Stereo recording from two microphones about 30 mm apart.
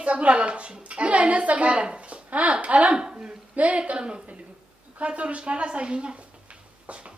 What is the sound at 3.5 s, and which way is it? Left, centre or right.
Speech, right.